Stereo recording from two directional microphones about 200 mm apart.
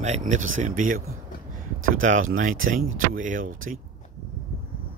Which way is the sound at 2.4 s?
40° right (ahead or behind).